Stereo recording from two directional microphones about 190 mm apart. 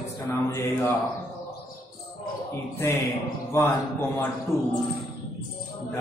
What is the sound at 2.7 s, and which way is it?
A man's voice, 15° left (ahead or behind).